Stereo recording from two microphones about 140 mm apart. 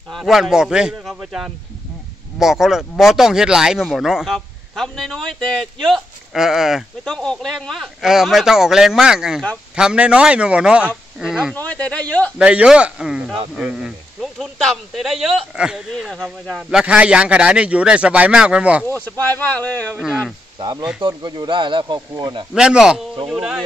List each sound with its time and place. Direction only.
0.1 s a man's voice: centre (ahead or behind)
11.5 s speech: 10° left (ahead or behind)
12.4 s a man's voice: 5° right (ahead or behind)
19.3 s speech: 10° left (ahead or behind)
20.5 s speech: 30° right (ahead or behind)
22.5 s speech: 5° right (ahead or behind)